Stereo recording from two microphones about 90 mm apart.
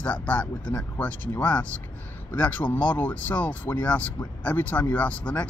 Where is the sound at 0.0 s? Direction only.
15° left (ahead or behind).